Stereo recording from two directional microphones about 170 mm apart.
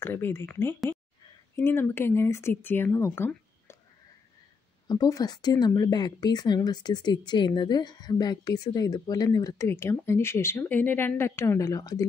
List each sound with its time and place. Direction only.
0.0 s speech: 15° left (ahead or behind)
4.8 s speech: 20° left (ahead or behind)